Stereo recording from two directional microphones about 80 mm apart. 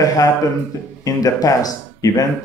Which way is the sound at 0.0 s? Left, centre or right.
Left.